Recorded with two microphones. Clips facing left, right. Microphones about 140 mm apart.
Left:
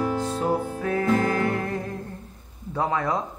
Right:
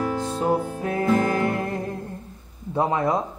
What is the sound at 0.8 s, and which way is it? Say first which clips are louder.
Music: even; 25° right (ahead or behind).